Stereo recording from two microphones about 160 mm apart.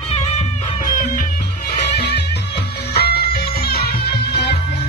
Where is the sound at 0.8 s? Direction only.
60° left (ahead or behind).